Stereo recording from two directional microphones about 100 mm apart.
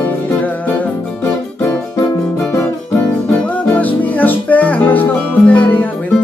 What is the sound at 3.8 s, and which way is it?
Music, 15° left (ahead or behind).